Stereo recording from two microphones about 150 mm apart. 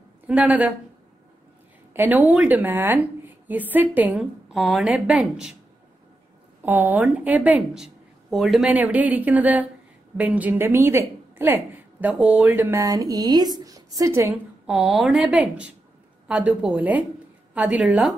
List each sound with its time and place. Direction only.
0.3 s a woman's voice: 10° right (ahead or behind)
2.0 s a woman's voice: 15° right (ahead or behind)
6.6 s a woman's voice: 15° right (ahead or behind)
14.7 s a woman's voice: centre (ahead or behind)